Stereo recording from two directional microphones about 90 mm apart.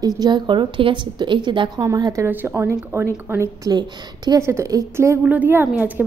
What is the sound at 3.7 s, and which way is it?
Speech, 50° right (ahead or behind).